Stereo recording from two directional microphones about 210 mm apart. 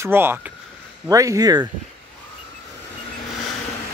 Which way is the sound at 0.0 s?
10° right (ahead or behind).